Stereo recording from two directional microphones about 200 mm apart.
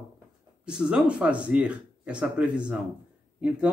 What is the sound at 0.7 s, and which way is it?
Speech, 5° right (ahead or behind).